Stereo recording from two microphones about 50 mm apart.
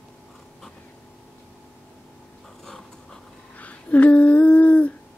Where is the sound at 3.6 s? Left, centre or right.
Left.